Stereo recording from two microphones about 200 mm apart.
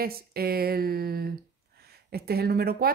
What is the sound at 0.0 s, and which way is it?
Speech, 50° right (ahead or behind).